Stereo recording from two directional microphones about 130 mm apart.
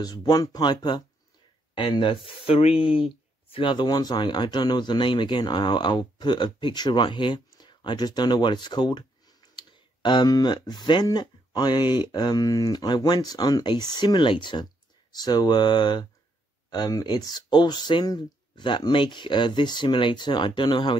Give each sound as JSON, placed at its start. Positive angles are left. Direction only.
{"t": 0.0, "sound": "speech", "side_deg": 30}